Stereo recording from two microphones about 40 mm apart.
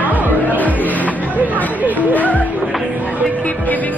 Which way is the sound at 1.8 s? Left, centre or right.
Right.